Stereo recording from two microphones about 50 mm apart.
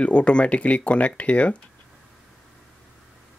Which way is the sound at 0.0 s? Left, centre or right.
Left.